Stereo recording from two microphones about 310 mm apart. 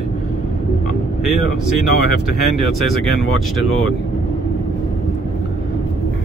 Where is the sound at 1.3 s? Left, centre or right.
Right.